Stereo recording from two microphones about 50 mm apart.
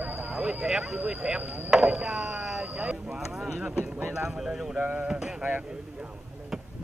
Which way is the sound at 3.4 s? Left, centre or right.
Centre.